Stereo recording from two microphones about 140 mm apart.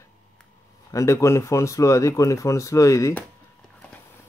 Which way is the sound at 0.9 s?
20° left (ahead or behind).